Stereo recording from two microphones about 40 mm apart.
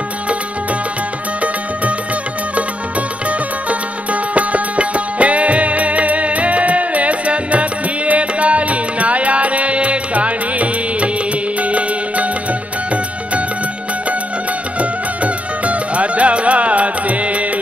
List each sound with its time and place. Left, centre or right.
4.1 s music: right
14.8 s music: right